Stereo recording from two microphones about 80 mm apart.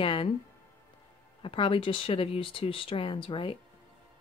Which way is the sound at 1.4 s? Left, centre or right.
Left.